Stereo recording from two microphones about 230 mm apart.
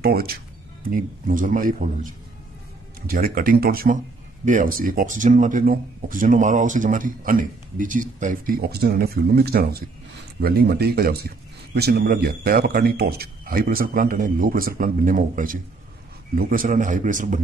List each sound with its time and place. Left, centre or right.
0.0 s speech: right